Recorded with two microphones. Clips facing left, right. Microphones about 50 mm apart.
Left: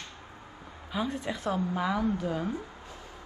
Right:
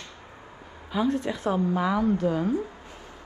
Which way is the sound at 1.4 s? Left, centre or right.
Right.